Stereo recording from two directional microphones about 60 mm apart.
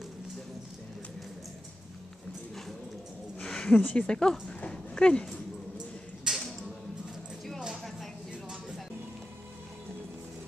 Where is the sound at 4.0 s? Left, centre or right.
Centre.